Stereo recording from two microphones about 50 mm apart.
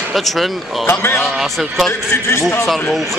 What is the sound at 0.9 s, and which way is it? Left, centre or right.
Speech, left.